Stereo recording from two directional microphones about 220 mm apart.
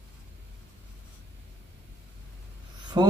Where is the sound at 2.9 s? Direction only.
20° right (ahead or behind).